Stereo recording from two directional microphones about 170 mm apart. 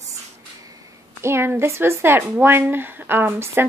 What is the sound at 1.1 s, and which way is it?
A woman's voice, 15° right (ahead or behind).